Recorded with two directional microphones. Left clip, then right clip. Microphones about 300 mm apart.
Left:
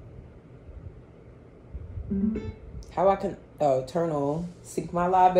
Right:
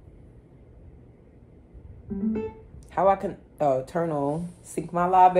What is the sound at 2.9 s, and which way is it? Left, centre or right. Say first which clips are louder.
Speech: right 1 dB; right.